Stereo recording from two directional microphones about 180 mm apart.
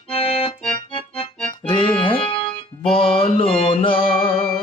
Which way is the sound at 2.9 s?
30° left (ahead or behind).